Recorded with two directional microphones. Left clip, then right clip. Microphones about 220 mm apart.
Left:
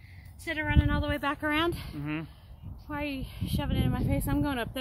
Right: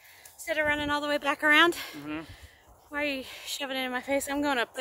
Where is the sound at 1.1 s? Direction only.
30° right (ahead or behind).